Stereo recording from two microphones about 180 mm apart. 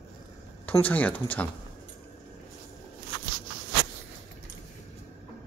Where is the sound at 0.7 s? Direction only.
10° left (ahead or behind).